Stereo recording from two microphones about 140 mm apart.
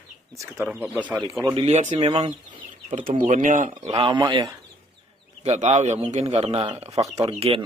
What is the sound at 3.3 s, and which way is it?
Speech, 70° right (ahead or behind).